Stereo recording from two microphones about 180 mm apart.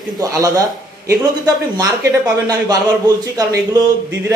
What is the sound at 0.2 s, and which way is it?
Speech, 20° right (ahead or behind).